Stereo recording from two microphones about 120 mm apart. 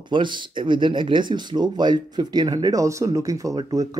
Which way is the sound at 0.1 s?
40° right (ahead or behind).